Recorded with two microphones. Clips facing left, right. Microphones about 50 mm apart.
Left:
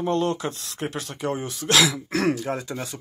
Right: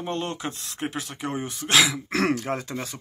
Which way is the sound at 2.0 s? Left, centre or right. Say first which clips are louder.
Left 1 dB; right.